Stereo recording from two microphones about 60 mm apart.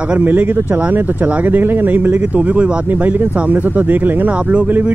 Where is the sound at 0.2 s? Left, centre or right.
Right.